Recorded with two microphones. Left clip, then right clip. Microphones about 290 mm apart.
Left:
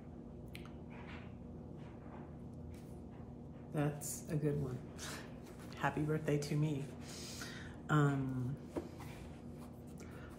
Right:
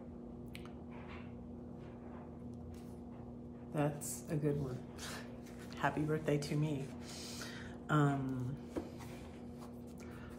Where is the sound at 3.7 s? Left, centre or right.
Centre.